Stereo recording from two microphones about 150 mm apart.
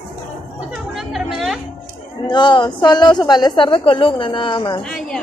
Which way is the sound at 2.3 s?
30° left (ahead or behind).